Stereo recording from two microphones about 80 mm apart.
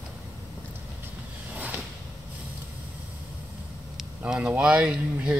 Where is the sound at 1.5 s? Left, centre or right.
Right.